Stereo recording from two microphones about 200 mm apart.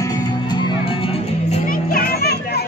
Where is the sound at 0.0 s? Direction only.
20° left (ahead or behind).